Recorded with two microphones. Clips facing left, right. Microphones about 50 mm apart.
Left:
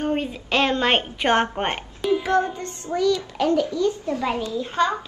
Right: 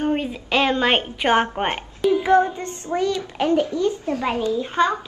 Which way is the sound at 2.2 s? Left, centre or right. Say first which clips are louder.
Right 4 dB; right.